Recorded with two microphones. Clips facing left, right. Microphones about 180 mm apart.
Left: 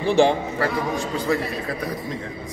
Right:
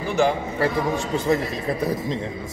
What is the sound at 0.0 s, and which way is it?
Speech, 30° left (ahead or behind).